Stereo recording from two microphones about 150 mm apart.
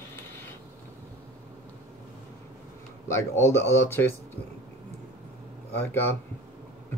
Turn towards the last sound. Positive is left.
turn(degrees=15)  # may be behind; listen again after turning